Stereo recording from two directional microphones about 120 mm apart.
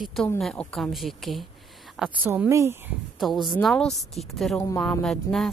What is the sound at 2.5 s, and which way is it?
Speech, 25° right (ahead or behind).